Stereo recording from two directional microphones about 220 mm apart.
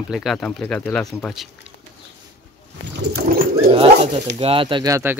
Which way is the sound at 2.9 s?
45° right (ahead or behind).